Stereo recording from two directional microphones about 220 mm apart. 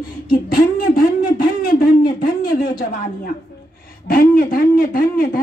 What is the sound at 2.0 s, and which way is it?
A man's voice, 40° left (ahead or behind).